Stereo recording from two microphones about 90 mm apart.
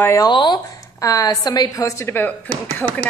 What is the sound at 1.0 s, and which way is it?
A woman's voice, 40° left (ahead or behind).